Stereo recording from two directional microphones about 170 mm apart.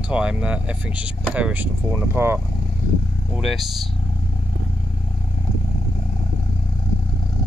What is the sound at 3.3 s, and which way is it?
Speech, centre (ahead or behind).